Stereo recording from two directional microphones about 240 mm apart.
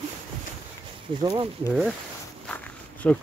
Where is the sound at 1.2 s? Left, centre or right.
Right.